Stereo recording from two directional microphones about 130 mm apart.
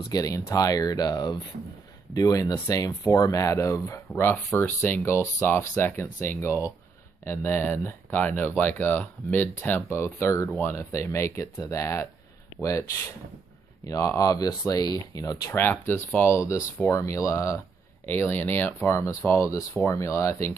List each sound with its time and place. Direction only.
0.1 s speech: 30° left (ahead or behind)
13.8 s speech: 25° left (ahead or behind)
15.6 s speech: 15° left (ahead or behind)